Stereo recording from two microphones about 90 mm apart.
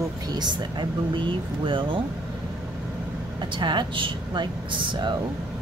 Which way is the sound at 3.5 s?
60° right (ahead or behind).